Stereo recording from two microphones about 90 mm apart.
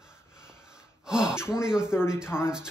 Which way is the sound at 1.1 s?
10° right (ahead or behind).